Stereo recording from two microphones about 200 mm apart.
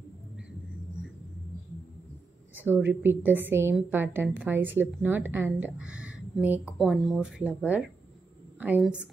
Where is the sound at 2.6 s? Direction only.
10° right (ahead or behind).